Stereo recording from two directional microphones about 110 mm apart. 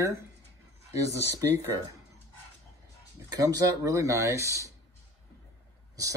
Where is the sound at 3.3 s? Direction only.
35° right (ahead or behind).